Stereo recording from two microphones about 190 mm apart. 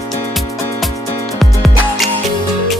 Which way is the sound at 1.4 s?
Centre (ahead or behind).